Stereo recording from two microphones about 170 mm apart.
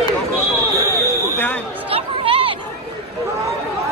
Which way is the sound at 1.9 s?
35° right (ahead or behind).